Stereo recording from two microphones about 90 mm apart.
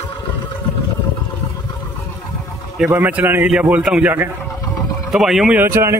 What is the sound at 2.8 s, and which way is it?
Speech, 20° right (ahead or behind).